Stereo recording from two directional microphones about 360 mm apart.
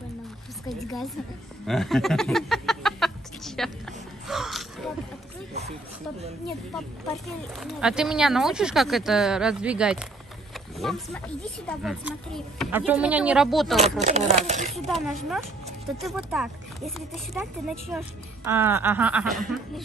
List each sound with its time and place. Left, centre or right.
0.7 s speech: centre
1.7 s a sound: centre
7.6 s speech: centre
14.0 s speech: centre
15.0 s speech: centre